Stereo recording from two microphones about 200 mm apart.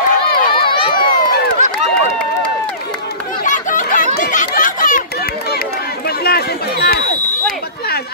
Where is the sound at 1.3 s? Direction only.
55° left (ahead or behind).